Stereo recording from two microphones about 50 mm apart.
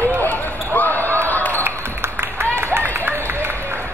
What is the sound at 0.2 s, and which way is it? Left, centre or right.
Basketball bounce, left.